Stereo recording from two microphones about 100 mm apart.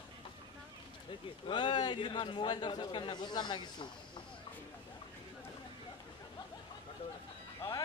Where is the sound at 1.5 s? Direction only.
50° left (ahead or behind).